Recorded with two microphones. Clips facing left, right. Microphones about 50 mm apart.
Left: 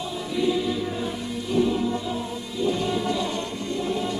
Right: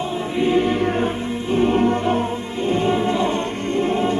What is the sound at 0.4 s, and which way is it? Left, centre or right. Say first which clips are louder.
Music: right 6 dB; right.